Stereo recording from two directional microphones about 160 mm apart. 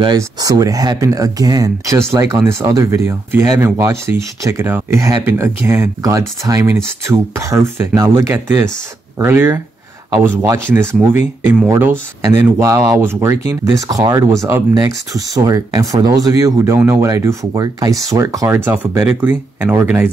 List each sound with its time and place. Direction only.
0.0 s speech: 25° right (ahead or behind)